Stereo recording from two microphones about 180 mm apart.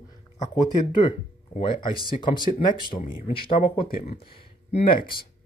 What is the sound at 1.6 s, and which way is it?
Speech, 25° left (ahead or behind).